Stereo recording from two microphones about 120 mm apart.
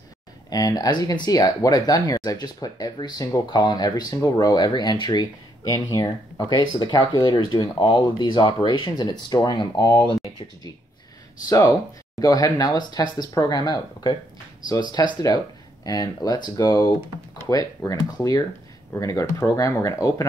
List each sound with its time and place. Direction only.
0.5 s speech: 30° left (ahead or behind)
12.2 s speech: 30° left (ahead or behind)